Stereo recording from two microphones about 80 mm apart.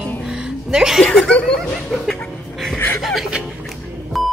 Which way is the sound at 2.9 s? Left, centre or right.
Centre.